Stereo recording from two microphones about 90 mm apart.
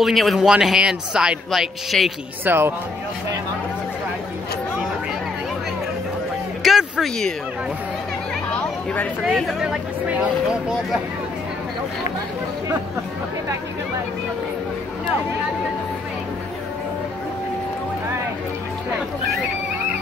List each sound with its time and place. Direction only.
0.0 s speech: centre (ahead or behind)
2.4 s speech: 25° right (ahead or behind)
6.6 s a sound: centre (ahead or behind)
9.2 s speech: centre (ahead or behind)
10.0 s speech: 15° right (ahead or behind)